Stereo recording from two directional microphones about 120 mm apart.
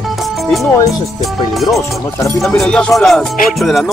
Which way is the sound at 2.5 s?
10° left (ahead or behind).